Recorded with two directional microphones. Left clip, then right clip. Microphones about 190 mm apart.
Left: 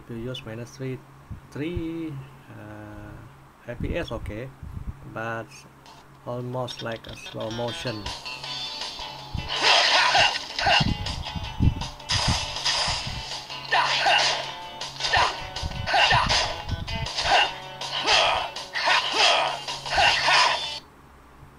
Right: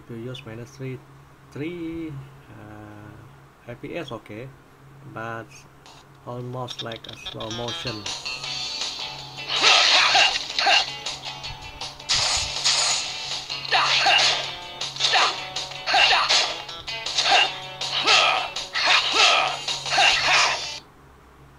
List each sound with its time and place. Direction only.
0.2 s speech: 15° left (ahead or behind)
3.6 s speech: 15° left (ahead or behind)
7.2 s speech: 10° right (ahead or behind)
7.9 s music: 5° right (ahead or behind)